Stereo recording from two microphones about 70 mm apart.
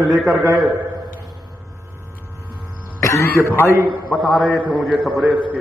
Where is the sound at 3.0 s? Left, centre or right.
Left.